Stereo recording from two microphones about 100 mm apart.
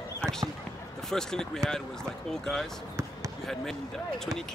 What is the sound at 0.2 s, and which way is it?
Basketball bounce, 5° left (ahead or behind).